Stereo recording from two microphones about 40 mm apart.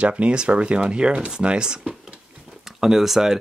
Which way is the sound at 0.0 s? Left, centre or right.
Right.